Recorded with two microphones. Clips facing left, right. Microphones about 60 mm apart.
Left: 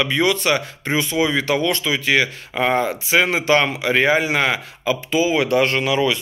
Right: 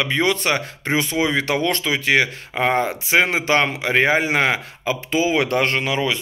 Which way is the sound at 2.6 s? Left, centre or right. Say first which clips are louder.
Left 1 dB; right.